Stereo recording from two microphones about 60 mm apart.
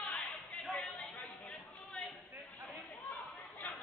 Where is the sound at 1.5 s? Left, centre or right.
Centre.